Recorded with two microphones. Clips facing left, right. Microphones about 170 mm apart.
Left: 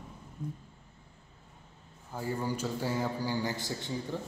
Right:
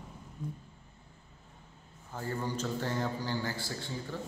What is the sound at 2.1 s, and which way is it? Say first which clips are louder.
A man's voice: left 2 dB; 10° left (ahead or behind).